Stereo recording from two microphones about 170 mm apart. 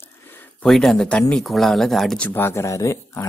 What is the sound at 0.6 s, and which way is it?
Speech, centre (ahead or behind).